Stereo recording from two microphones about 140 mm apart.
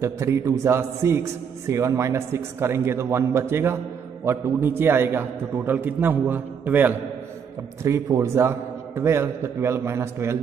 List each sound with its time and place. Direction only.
0.0 s a man's voice: 20° right (ahead or behind)